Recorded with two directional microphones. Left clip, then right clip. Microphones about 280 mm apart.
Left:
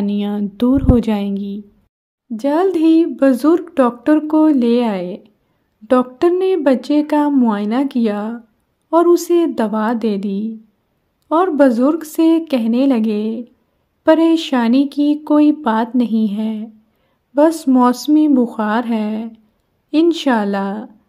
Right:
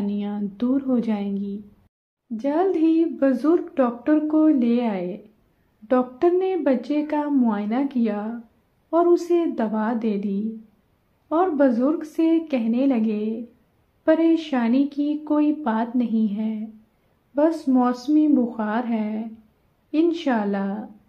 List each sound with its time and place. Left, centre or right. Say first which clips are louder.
0.0 s a woman's voice: left 8 dB; left